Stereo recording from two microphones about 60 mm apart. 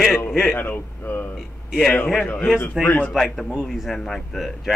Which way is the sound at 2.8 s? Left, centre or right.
Centre.